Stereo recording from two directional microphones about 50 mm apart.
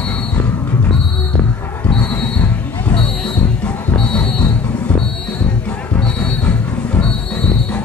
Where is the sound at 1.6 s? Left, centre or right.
Left.